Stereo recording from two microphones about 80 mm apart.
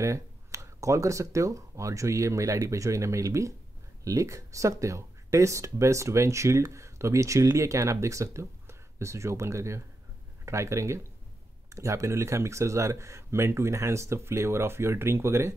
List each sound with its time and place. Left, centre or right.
0.0 s speech: right